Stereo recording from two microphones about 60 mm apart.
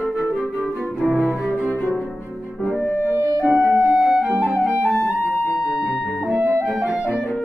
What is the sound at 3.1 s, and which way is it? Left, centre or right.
Music, right.